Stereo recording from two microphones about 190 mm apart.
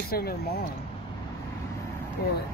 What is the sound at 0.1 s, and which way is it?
Speech, 55° left (ahead or behind).